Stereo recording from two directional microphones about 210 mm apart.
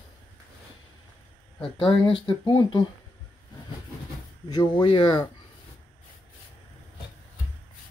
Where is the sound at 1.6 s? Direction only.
25° left (ahead or behind).